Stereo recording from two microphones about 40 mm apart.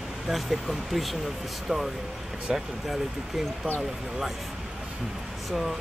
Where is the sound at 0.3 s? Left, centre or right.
Centre.